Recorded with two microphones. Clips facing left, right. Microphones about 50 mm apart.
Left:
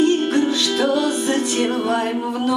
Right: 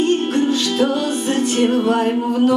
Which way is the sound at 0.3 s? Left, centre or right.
Right.